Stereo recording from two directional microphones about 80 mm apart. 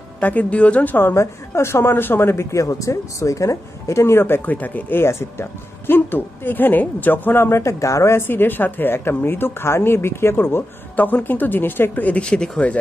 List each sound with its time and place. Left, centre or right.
0.2 s a woman's voice: centre